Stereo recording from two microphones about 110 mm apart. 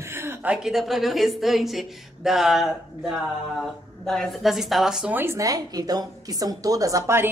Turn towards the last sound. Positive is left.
turn(degrees=-25)  # may be behind; listen again after turning